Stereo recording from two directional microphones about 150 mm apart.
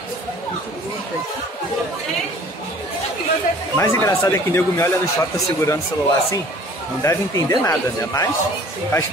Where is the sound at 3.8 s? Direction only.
20° left (ahead or behind).